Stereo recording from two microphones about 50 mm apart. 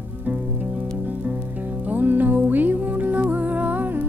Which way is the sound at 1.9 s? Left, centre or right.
Right.